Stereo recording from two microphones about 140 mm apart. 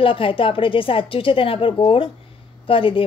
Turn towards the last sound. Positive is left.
turn(degrees=40)  # may be behind; listen again after turning